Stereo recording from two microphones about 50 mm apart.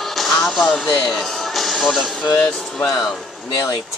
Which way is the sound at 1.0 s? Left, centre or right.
Centre.